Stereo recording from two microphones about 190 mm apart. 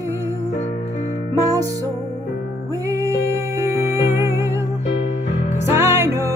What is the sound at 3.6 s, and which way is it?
Music, 15° right (ahead or behind).